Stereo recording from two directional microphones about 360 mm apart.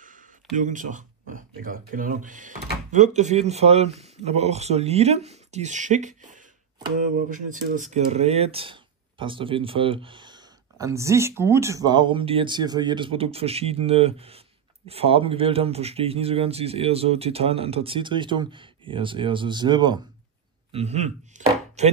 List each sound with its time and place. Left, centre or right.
0.0 s speech: right
20.7 s chopping: centre